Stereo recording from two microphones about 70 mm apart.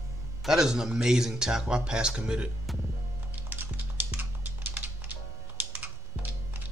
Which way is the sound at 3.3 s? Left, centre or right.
Right.